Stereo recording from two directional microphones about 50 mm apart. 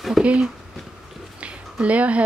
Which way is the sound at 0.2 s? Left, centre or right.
Right.